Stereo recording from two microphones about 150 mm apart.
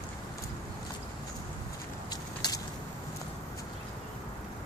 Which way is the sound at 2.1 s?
25° left (ahead or behind).